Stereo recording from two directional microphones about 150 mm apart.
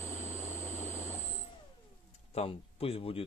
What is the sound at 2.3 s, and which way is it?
Speech, 40° left (ahead or behind).